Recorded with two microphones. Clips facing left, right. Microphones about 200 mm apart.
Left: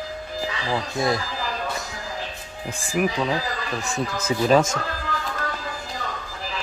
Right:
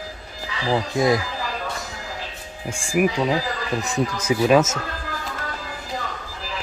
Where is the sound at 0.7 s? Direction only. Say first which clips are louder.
Right 5 dB; 15° right (ahead or behind).